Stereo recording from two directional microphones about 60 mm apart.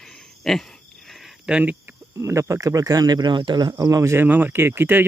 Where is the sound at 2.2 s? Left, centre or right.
Right.